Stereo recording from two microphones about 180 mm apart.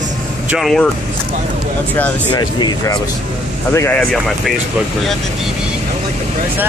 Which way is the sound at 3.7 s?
10° left (ahead or behind).